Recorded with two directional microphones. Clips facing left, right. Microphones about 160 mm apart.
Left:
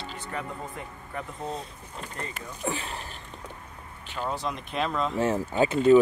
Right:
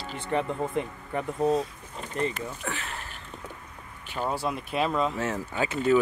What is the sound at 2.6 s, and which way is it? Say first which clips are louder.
Speech: left 6 dB; 25° left (ahead or behind).